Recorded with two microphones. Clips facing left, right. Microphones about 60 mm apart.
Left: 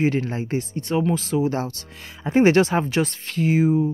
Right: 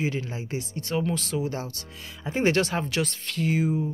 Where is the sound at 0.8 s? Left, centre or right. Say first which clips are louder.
Left 4 dB; centre.